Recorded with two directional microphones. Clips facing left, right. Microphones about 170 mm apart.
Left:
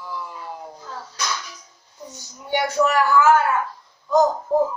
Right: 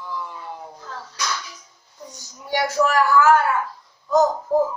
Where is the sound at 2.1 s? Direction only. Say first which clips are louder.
Left 1 dB; centre (ahead or behind).